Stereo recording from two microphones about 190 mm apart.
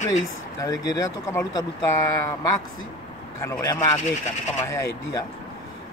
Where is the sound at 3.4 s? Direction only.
15° left (ahead or behind).